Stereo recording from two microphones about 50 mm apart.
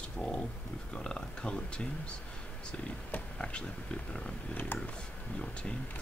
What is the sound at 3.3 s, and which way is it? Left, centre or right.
Speech, centre.